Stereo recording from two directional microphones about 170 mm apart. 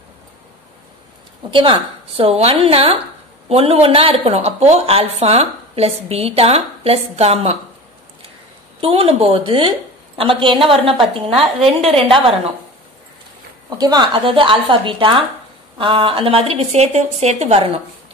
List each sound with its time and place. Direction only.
1.5 s a woman's voice: 30° right (ahead or behind)
8.8 s a woman's voice: 35° right (ahead or behind)
13.7 s a woman's voice: 25° right (ahead or behind)